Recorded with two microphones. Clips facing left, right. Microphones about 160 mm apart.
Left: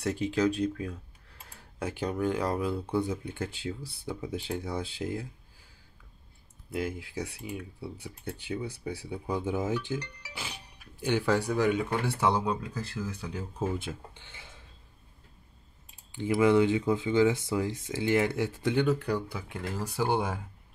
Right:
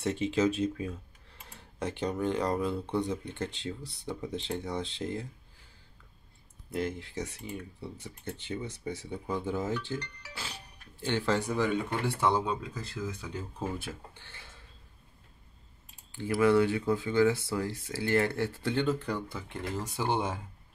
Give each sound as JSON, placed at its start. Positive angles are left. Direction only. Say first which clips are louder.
{"t": 0.0, "sound": "speech", "louder": "even", "side_deg": 0}
{"t": 6.7, "sound": "speech", "louder": "even", "side_deg": 5}
{"t": 13.3, "sound": "speech", "louder": "left 3 dB", "side_deg": 20}
{"t": 16.1, "sound": "speech", "louder": "left 1 dB", "side_deg": 15}